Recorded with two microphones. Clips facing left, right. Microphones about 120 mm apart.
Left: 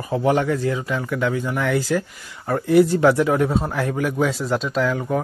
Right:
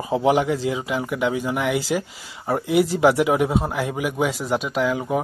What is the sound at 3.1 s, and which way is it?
Speech, 10° right (ahead or behind).